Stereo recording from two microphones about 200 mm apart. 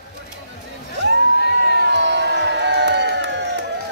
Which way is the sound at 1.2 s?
55° left (ahead or behind).